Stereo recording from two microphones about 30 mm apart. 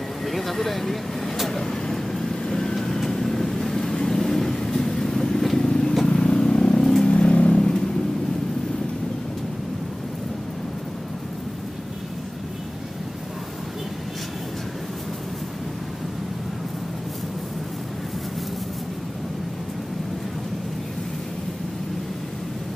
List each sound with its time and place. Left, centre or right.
0.2 s vehicle: centre; by 6.9 s left
7.1 s vehicle: left
7.5 s vehicle: left